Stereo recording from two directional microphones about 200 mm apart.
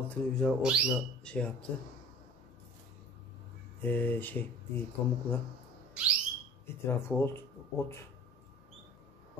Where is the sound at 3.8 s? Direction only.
10° left (ahead or behind).